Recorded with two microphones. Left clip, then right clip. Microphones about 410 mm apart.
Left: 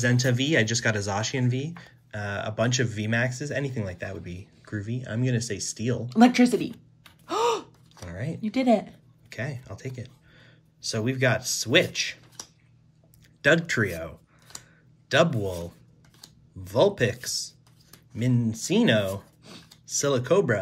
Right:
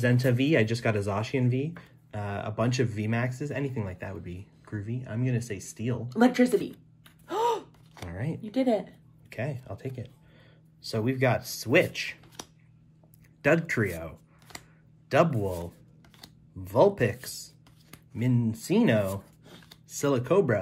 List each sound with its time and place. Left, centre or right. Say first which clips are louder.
0.0 s speech: left 1 dB; centre
6.0 s speech: left 3 dB; left
7.2 s gasp: left 2 dB; left
8.1 s a sound: left 1 dB; centre
9.3 s speech: even; centre
13.4 s speech: left 3 dB; centre